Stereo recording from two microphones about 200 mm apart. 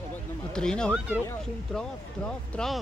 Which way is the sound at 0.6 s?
5° left (ahead or behind).